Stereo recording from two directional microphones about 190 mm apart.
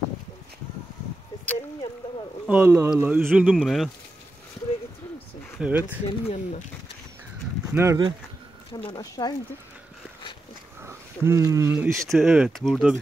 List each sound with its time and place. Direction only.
2.4 s speech: 10° right (ahead or behind)
5.6 s speech: 10° right (ahead or behind)
6.0 s speech: 35° left (ahead or behind)
7.7 s speech: 15° right (ahead or behind)
8.8 s speech: 20° left (ahead or behind)
10.8 s a sound: 15° right (ahead or behind)
11.7 s speech: 5° right (ahead or behind)